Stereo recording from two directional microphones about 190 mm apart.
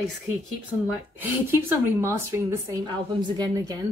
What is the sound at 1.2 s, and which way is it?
Speech, 10° right (ahead or behind).